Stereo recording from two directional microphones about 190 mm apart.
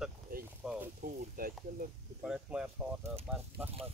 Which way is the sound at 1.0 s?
50° right (ahead or behind).